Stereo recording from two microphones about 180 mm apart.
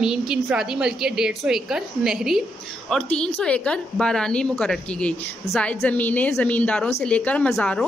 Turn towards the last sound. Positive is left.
turn(degrees=5)  # may be behind; listen again after turning